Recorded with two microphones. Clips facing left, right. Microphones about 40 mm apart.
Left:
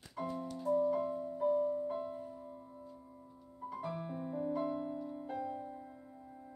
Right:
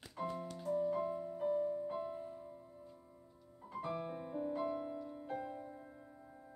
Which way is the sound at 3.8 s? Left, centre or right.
Centre.